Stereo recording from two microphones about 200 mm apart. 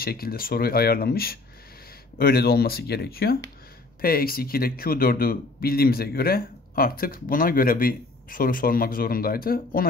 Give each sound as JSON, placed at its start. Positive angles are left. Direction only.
{"t": 0.0, "sound": "speech", "side_deg": 50}